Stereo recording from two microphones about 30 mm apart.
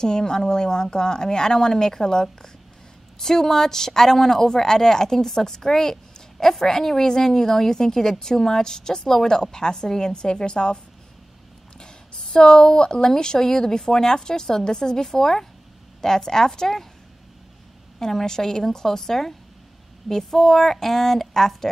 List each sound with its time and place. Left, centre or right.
0.0 s a woman's voice: left
11.8 s a sound: left
13.2 s a woman's voice: left
17.9 s speech: centre